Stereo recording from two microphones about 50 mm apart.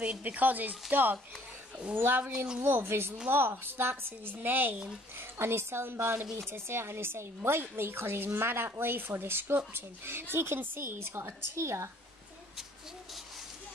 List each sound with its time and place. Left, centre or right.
0.0 s a woman's voice: right
5.4 s a woman's voice: right